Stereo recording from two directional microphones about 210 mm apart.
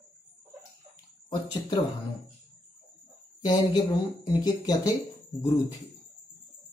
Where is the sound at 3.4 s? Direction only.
20° left (ahead or behind).